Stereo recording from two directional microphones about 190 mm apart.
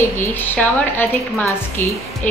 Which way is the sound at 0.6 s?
10° left (ahead or behind).